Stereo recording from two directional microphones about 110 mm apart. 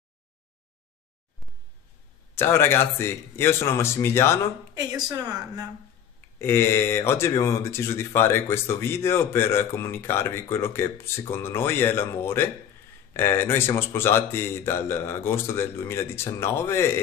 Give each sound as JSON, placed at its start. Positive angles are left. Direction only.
{"t": 2.3, "sound": "speech", "side_deg": 20}
{"t": 4.7, "sound": "a woman's voice", "side_deg": -35}
{"t": 6.4, "sound": "speech", "side_deg": 20}